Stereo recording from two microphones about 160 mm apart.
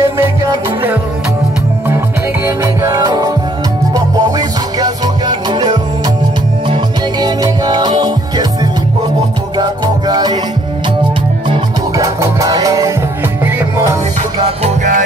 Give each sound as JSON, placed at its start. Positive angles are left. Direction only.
{"t": 0.0, "sound": "music", "side_deg": -15}
{"t": 2.4, "sound": "music", "side_deg": -20}
{"t": 9.6, "sound": "music", "side_deg": -25}
{"t": 12.0, "sound": "music", "side_deg": -20}
{"t": 14.4, "sound": "music", "side_deg": -45}